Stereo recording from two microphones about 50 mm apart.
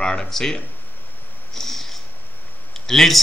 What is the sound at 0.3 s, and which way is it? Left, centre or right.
Speech, centre.